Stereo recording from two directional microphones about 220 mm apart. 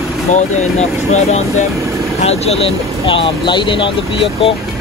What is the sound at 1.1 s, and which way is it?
Speech, 30° left (ahead or behind).